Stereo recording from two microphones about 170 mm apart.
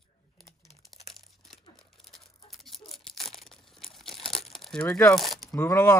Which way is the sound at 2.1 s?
Centre (ahead or behind).